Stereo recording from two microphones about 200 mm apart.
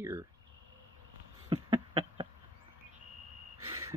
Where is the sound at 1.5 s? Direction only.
25° right (ahead or behind).